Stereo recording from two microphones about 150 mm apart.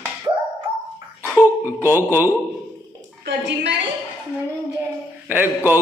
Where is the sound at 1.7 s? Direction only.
15° right (ahead or behind).